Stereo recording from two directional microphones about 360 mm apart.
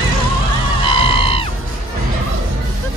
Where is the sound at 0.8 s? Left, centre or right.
Centre.